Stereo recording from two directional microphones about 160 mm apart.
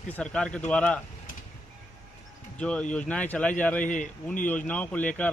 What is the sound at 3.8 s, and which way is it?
Speech, 55° left (ahead or behind).